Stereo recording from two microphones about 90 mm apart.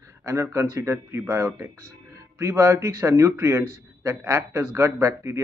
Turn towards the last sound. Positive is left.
turn(degrees=-35)  # may be behind; listen again after turning